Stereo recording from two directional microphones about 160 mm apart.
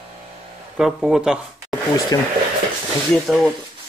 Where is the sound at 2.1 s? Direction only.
20° left (ahead or behind).